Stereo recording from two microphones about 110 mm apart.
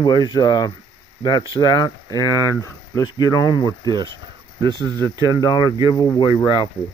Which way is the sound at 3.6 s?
40° right (ahead or behind).